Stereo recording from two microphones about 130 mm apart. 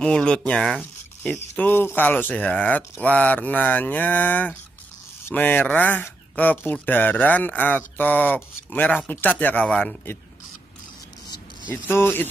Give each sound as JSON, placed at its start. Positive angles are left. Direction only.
{"t": 0.0, "sound": "speech", "side_deg": 5}
{"t": 1.3, "sound": "speech", "side_deg": 15}
{"t": 11.7, "sound": "speech", "side_deg": 15}